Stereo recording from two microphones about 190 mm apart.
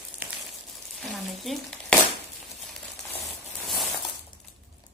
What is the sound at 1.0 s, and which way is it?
Frying, centre (ahead or behind).